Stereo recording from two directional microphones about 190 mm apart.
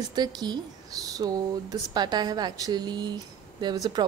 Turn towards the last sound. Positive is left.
turn(degrees=-20)  # may be behind; listen again after turning